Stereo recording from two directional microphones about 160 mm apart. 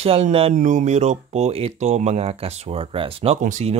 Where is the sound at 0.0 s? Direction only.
40° right (ahead or behind).